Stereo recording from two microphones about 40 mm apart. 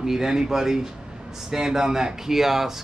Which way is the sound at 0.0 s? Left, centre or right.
Centre.